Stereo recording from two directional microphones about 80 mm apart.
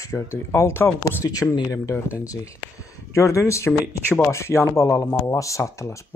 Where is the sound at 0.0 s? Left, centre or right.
Left.